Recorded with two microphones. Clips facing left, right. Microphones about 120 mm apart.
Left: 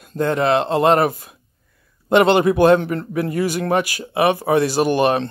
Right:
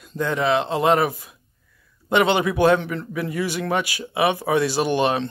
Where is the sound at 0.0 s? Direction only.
50° left (ahead or behind).